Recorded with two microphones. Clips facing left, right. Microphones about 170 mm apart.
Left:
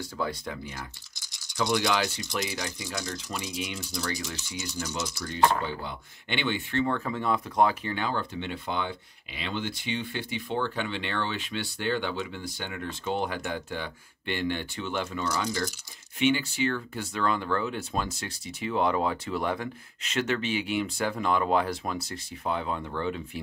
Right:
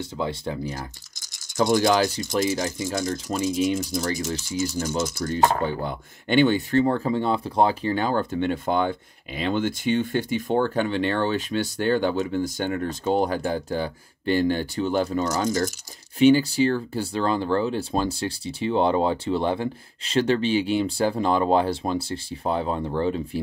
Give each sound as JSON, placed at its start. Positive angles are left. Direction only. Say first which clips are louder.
{"t": 0.0, "sound": "speech", "louder": "right 4 dB", "side_deg": -25}